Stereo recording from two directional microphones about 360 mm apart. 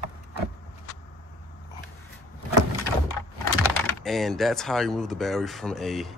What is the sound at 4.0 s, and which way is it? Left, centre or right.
Speech, centre.